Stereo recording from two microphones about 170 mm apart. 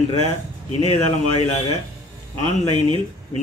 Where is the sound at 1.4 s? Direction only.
35° left (ahead or behind).